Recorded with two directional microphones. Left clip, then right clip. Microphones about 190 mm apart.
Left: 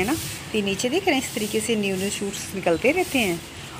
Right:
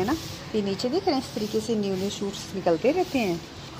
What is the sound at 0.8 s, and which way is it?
Speech, 25° left (ahead or behind).